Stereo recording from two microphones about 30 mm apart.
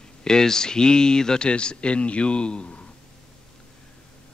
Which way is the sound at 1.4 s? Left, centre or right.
Left.